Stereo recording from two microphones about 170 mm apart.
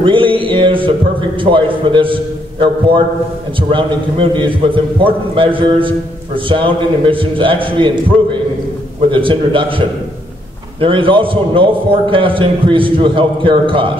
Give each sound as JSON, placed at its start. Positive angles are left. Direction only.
{"t": 0.0, "sound": "a man's voice", "side_deg": -30}
{"t": 3.5, "sound": "a man's voice", "side_deg": -30}